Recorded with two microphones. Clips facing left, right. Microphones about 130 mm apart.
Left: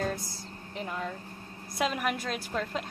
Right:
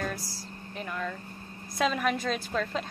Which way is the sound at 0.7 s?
20° left (ahead or behind).